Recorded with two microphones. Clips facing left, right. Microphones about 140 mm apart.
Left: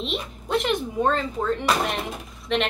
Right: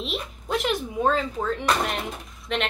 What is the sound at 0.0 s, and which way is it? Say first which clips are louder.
A woman's voice: left 2 dB; centre (ahead or behind).